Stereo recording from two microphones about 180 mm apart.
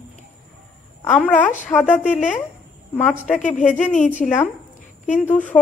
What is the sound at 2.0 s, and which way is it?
Speech, 45° left (ahead or behind).